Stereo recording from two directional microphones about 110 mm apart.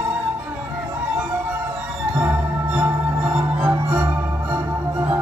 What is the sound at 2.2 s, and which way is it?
Music, 20° right (ahead or behind).